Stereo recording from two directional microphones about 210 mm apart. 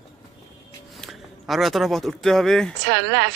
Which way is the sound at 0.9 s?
Centre (ahead or behind).